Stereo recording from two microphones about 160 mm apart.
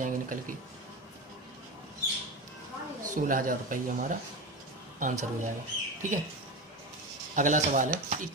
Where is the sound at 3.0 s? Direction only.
55° right (ahead or behind).